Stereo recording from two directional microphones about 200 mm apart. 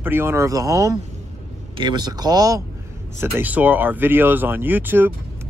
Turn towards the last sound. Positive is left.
turn(degrees=-10)  # may be behind; listen again after turning